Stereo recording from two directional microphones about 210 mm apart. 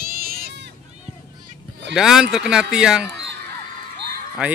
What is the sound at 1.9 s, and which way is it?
Speech, 5° right (ahead or behind).